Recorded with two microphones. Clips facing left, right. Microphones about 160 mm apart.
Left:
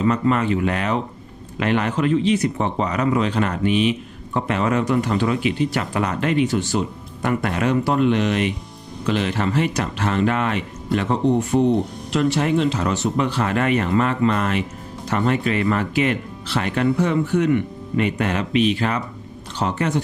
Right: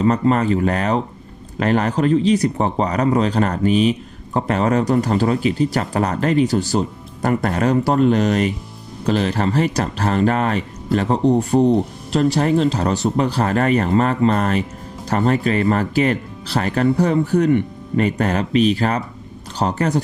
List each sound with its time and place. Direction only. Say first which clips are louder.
0.0 s a man's voice: right 3 dB; 35° right (ahead or behind)